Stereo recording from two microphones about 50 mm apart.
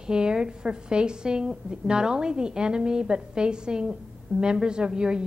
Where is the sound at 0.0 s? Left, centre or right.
Centre.